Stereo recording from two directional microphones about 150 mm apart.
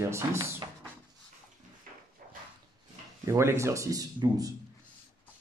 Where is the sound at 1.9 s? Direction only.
65° right (ahead or behind).